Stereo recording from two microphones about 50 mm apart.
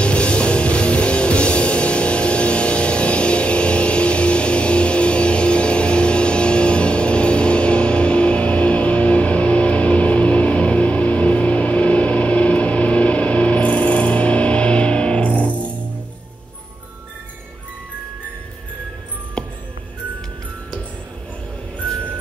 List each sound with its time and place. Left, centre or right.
0.0 s music: left
15.4 s music: right